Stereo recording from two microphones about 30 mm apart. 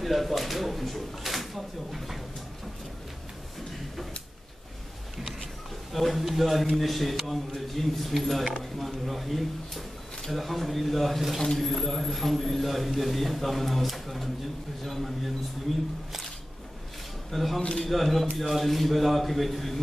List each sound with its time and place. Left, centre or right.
0.0 s speech: centre
5.9 s a man's voice: centre
17.3 s speech: centre
17.6 s speech: left
17.8 s a man's voice: centre